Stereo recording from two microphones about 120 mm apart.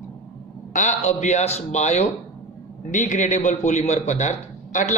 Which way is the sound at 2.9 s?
90° left.